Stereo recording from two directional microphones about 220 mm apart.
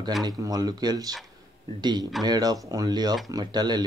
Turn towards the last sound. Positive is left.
turn(degrees=-20)  # may be behind; listen again after turning